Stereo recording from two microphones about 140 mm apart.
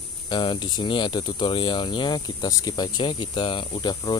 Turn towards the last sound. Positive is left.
turn(degrees=35)  # may be behind; listen again after turning